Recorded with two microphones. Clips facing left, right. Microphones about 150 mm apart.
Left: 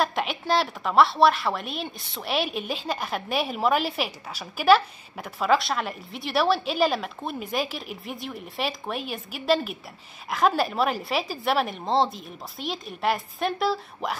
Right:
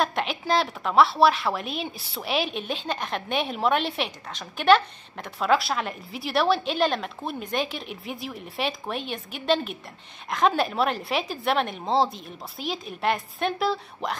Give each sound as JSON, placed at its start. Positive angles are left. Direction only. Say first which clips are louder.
{"t": 0.0, "sound": "a woman's voice", "louder": "even", "side_deg": 0}